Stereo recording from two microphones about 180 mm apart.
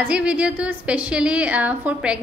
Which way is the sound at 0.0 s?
5° right (ahead or behind).